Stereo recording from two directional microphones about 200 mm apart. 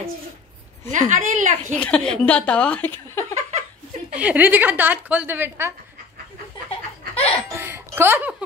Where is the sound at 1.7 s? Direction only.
5° left (ahead or behind).